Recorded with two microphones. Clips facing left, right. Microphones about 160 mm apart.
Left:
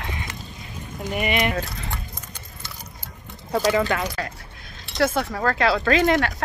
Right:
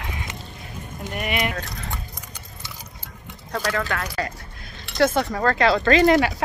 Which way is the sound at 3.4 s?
10° left (ahead or behind).